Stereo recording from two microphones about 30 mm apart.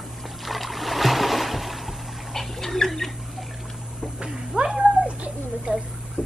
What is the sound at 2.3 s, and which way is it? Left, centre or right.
Splash, centre.